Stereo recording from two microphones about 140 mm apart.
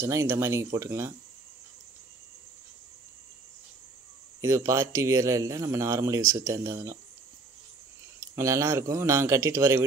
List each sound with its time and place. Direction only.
0.0 s a man's voice: 20° right (ahead or behind)
4.4 s a man's voice: 20° right (ahead or behind)
8.4 s a man's voice: 20° right (ahead or behind)